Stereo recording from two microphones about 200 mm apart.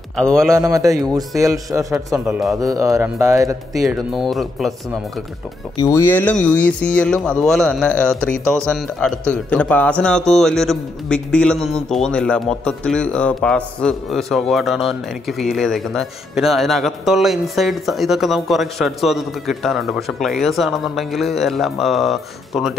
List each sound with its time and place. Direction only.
0.1 s a man's voice: 5° left (ahead or behind)
0.6 s speech: 15° right (ahead or behind)
2.6 s speech: 15° right (ahead or behind)
3.8 s a man's voice: centre (ahead or behind)
5.8 s a man's voice: 15° left (ahead or behind); by 22.8 s centre (ahead or behind)